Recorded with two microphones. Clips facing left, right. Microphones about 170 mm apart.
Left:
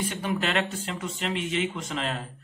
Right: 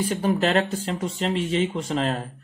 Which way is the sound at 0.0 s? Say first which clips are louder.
Right 6 dB; 35° right (ahead or behind).